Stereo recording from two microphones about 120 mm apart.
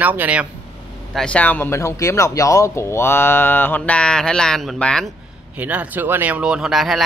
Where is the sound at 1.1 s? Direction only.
5° left (ahead or behind).